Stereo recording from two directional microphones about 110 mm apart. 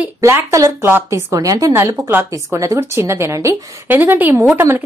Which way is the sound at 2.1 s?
20° right (ahead or behind).